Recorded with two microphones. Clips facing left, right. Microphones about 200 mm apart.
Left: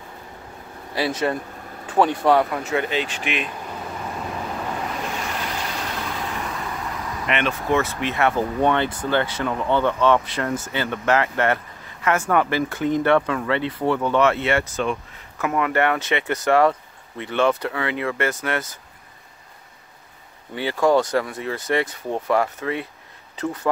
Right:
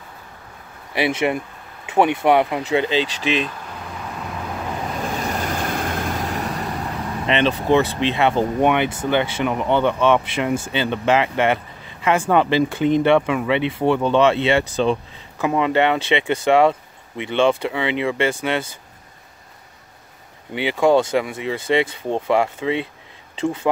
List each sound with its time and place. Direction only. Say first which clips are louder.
0.9 s speech: right 3 dB; 20° right (ahead or behind)
5.2 s vehicle: right 5 dB; 45° right (ahead or behind); by 12.2 s 15° right (ahead or behind)
12.2 s speech: right 5 dB; 25° right (ahead or behind)
20.5 s speech: right 2 dB; 20° right (ahead or behind)